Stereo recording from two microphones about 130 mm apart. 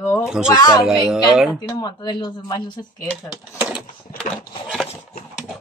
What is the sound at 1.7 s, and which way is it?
Speech, 30° left (ahead or behind).